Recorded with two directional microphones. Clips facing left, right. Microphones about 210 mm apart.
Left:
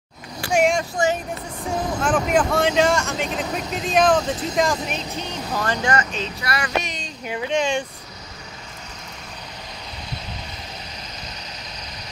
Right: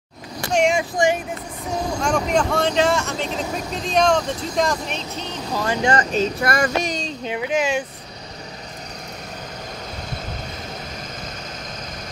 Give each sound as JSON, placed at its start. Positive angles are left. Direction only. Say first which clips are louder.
{"t": 0.5, "sound": "vehicle", "louder": "even", "side_deg": 5}
{"t": 2.0, "sound": "speech", "louder": "left 1 dB", "side_deg": 5}
{"t": 5.5, "sound": "speech", "louder": "right 2 dB", "side_deg": -10}
{"t": 5.8, "sound": "speech", "louder": "right 4 dB", "side_deg": -30}
{"t": 6.1, "sound": "speech", "louder": "right 7 dB", "side_deg": -45}
{"t": 6.8, "sound": "a sound", "louder": "right 7 dB", "side_deg": -25}
{"t": 7.3, "sound": "speech", "louder": "even", "side_deg": -10}